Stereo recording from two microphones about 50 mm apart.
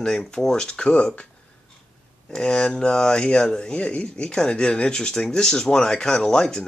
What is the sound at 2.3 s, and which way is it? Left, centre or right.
Speech, centre.